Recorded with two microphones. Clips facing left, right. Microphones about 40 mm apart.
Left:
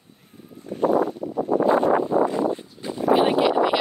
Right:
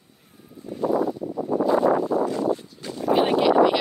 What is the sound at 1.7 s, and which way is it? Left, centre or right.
Wind, left.